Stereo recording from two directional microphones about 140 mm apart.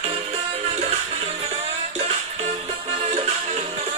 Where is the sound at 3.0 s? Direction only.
50° right (ahead or behind).